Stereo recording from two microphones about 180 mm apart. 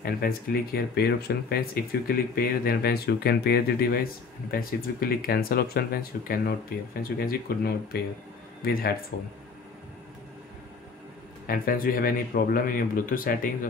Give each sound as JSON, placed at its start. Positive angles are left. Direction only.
{"t": 0.0, "sound": "speech", "side_deg": 55}
{"t": 11.4, "sound": "a man's voice", "side_deg": 55}